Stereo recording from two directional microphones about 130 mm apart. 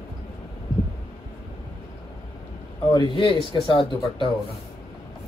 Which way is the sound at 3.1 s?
40° left (ahead or behind).